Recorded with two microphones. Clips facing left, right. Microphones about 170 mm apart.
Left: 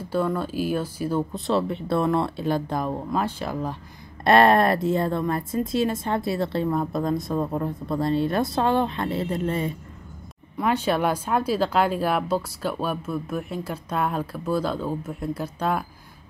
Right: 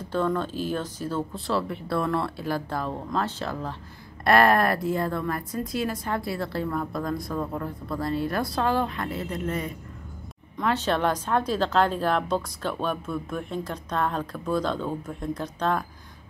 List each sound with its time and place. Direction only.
0.1 s speech: 10° left (ahead or behind)
4.2 s a woman's voice: 25° left (ahead or behind)
10.6 s speech: 10° left (ahead or behind)